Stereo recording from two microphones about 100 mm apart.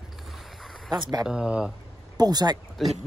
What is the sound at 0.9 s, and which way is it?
Speech, 50° right (ahead or behind).